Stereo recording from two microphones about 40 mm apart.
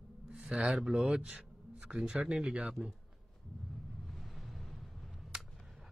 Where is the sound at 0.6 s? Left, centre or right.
Right.